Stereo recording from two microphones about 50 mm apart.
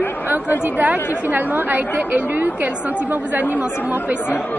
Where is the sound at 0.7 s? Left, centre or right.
Right.